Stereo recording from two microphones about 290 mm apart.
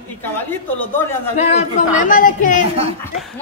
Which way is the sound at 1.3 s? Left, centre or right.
Left.